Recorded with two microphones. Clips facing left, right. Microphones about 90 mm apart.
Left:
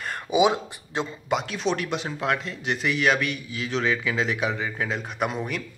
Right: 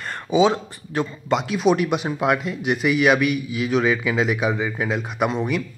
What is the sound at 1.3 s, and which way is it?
Speech, 10° right (ahead or behind).